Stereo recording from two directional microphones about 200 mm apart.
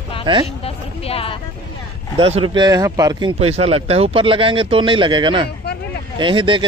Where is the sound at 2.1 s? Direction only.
25° right (ahead or behind).